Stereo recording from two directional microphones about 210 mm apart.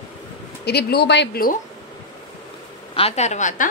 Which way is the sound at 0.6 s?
50° left (ahead or behind).